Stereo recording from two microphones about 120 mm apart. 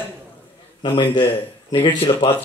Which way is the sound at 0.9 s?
45° left (ahead or behind).